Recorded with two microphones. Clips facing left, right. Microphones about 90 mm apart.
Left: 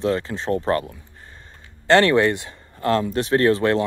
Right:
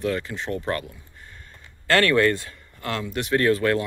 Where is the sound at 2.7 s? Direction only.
35° left (ahead or behind).